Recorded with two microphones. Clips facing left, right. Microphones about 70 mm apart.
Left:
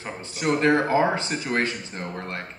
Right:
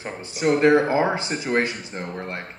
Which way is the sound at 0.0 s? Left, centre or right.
Centre.